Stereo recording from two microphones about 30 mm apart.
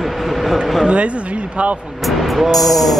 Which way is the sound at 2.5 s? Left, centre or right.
Centre.